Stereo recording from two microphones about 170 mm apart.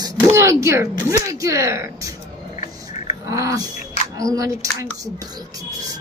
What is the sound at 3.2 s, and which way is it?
Speech, 20° right (ahead or behind).